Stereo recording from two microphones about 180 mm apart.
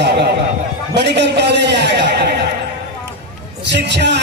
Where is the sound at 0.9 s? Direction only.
70° right (ahead or behind).